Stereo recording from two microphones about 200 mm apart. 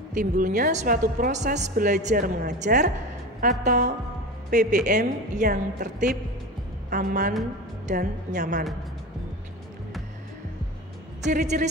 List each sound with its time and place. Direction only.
0.1 s speech: 40° right (ahead or behind)
11.2 s speech: 40° right (ahead or behind)